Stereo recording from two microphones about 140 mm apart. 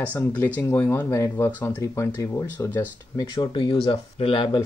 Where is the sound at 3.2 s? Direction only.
30° left (ahead or behind).